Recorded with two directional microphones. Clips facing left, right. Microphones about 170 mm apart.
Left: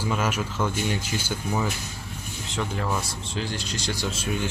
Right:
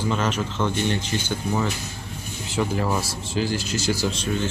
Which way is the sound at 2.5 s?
5° right (ahead or behind).